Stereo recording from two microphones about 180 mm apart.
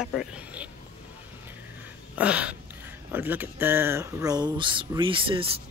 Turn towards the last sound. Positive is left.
turn(degrees=-30)  # may be behind; listen again after turning